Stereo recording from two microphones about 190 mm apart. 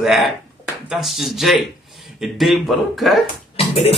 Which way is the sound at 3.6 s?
30° left (ahead or behind).